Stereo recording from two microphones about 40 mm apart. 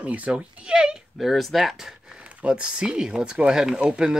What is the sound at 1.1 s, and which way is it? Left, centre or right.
Speech, centre.